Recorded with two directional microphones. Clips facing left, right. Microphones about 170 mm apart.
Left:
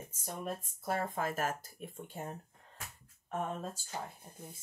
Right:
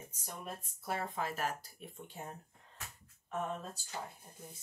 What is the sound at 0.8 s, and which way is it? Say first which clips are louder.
Speech: left 3 dB; 45° left (ahead or behind).